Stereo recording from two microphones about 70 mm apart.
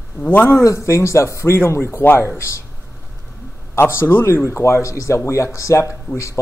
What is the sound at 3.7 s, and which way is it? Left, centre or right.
Speech, left.